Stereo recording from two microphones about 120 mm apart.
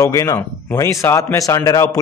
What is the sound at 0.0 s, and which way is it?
Speech, 30° left (ahead or behind).